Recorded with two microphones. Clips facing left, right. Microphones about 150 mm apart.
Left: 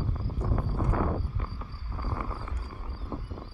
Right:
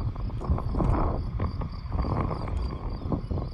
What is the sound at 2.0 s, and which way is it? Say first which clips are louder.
Cricket: right 6 dB; 35° right (ahead or behind).